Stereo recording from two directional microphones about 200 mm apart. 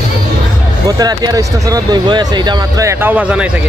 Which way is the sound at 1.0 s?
20° right (ahead or behind).